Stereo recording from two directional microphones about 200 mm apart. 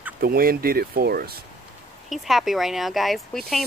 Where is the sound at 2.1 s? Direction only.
Centre (ahead or behind).